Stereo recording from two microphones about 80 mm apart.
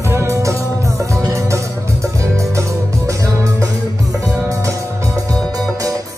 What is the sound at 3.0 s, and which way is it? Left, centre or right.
Music, right.